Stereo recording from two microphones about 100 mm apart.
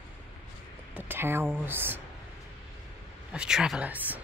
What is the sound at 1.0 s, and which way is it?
Speech, 20° right (ahead or behind).